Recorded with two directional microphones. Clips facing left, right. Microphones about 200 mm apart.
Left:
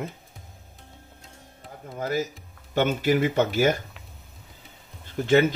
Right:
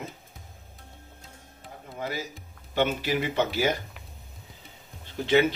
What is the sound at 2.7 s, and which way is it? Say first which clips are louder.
Speech: left 4 dB; 45° left (ahead or behind).